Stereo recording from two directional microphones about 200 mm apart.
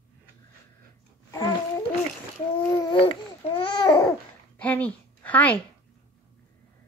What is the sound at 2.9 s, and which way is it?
Babbling, 25° left (ahead or behind).